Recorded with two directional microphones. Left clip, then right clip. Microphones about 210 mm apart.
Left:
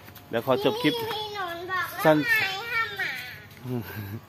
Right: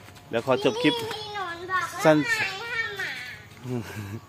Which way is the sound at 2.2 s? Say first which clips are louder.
Left 2 dB; 50° left (ahead or behind).